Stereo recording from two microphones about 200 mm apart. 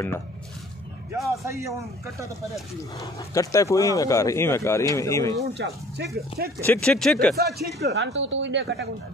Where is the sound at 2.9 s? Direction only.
15° left (ahead or behind).